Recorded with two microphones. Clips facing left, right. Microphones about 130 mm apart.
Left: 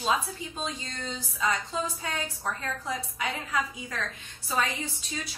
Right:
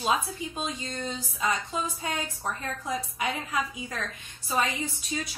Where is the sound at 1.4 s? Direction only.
15° right (ahead or behind).